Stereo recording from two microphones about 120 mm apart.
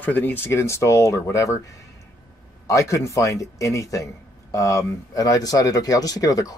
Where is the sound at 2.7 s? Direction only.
25° left (ahead or behind).